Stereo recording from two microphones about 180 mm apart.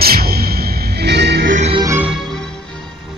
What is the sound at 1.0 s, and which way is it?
Music, 70° right (ahead or behind).